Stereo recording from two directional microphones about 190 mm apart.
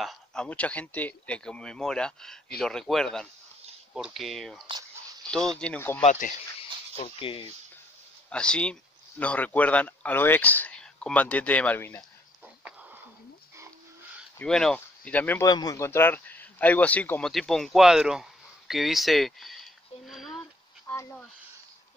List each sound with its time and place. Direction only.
0.0 s speech: centre (ahead or behind)
6.0 s speech: 45° left (ahead or behind)
7.0 s speech: 30° left (ahead or behind)
8.3 s speech: 5° left (ahead or behind)
14.4 s speech: 5° left (ahead or behind)
18.7 s a sound: centre (ahead or behind)
20.8 s a sound: 15° left (ahead or behind)